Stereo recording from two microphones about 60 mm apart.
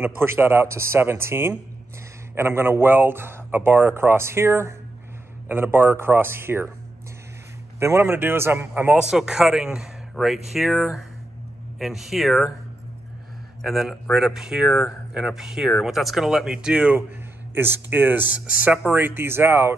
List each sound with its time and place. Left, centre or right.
0.0 s speech: right
7.8 s speech: right
8.9 s speech: centre
13.6 s speech: centre
17.6 s speech: right